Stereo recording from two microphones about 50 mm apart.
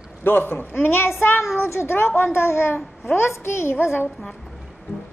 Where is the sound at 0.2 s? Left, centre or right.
Left.